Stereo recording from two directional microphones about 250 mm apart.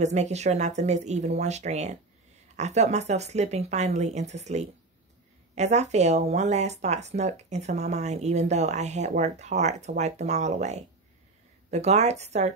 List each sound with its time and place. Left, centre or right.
0.0 s speech: right